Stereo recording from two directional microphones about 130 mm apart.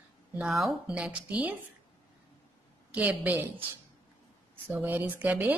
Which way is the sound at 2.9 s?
10° right (ahead or behind).